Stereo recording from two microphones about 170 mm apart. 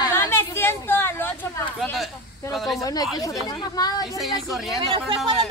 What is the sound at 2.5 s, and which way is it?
Speech, centre (ahead or behind).